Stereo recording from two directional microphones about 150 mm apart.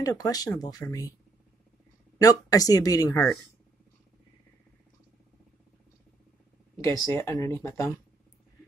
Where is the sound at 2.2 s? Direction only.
25° left (ahead or behind).